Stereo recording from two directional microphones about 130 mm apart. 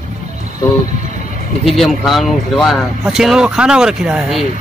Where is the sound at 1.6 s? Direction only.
Centre (ahead or behind).